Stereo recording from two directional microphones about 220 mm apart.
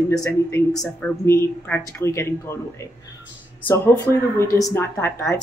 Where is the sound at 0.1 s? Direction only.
15° left (ahead or behind).